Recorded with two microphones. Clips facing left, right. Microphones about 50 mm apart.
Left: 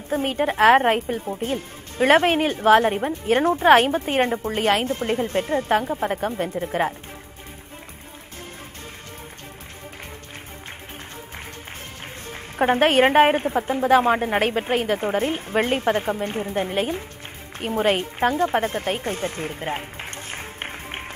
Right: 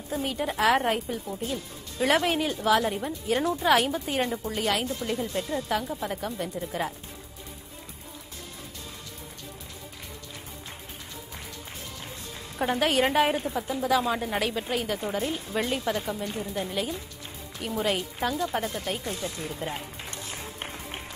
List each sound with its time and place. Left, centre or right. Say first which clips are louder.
0.1 s a woman's voice: left 7 dB; left
12.3 s a woman's voice: left 8 dB; left
20.2 s music: left 5 dB; left